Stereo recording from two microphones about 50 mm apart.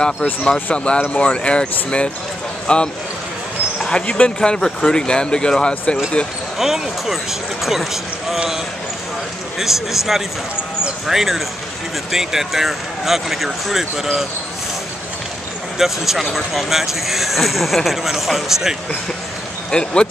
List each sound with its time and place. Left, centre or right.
0.0 s speech: left
6.6 s speech: centre
9.6 s speech: centre
15.8 s speech: centre
19.7 s speech: centre